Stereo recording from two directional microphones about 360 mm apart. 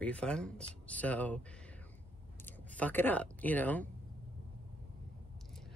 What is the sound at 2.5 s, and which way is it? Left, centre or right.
Speech, centre.